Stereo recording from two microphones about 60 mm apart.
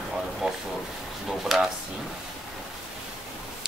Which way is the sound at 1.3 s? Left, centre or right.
Centre.